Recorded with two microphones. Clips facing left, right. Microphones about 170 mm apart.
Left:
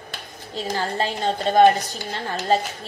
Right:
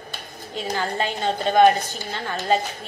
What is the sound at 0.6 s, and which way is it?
A woman's voice, 35° left (ahead or behind).